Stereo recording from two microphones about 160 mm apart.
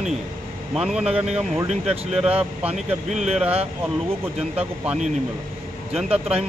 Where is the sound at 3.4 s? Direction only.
40° right (ahead or behind).